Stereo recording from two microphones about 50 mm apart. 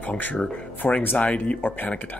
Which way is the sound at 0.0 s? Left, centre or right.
Left.